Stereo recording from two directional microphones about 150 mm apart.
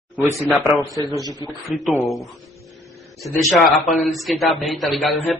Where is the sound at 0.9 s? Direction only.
20° left (ahead or behind).